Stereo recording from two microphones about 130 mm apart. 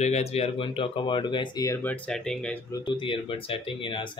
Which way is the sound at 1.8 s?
10° left (ahead or behind).